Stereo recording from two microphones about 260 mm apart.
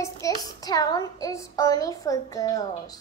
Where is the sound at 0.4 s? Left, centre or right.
Centre.